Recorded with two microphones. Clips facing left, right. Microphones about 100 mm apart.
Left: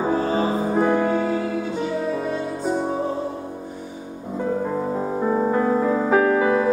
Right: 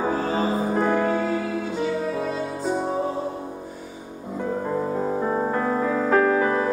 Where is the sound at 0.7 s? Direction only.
Centre (ahead or behind).